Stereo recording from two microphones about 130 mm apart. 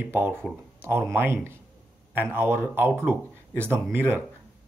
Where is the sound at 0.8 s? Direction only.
15° right (ahead or behind).